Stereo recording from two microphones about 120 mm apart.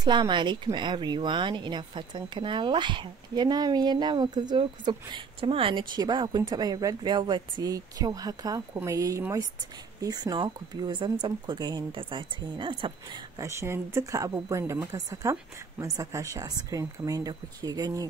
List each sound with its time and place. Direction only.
0.0 s speech: 40° right (ahead or behind)
13.4 s speech: 25° right (ahead or behind)